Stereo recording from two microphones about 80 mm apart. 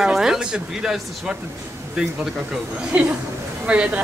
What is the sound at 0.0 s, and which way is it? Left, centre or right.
Speech, centre.